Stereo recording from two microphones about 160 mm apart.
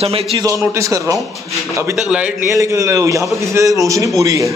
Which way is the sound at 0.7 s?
20° right (ahead or behind).